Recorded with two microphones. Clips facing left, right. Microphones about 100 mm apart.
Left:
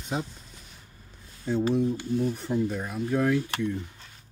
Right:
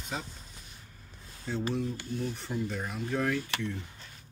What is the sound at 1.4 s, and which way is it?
Speech, 10° left (ahead or behind).